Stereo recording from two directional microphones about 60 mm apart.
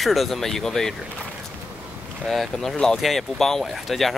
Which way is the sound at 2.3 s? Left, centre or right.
Centre.